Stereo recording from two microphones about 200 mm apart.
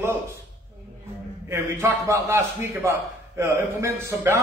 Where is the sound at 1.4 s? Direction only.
15° right (ahead or behind).